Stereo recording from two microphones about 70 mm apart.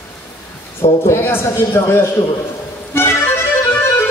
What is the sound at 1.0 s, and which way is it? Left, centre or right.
Speech, left.